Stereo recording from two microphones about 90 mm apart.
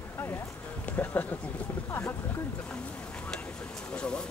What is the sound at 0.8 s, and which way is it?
Speech, 20° left (ahead or behind).